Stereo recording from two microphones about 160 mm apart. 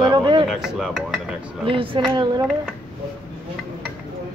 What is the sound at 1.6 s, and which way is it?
Speech, 35° right (ahead or behind).